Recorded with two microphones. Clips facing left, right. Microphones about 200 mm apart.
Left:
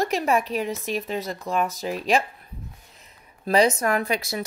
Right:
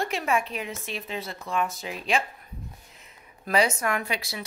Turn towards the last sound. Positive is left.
turn(degrees=45)  # may be behind; listen again after turning